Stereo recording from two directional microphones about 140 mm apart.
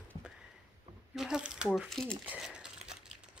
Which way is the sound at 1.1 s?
5° right (ahead or behind).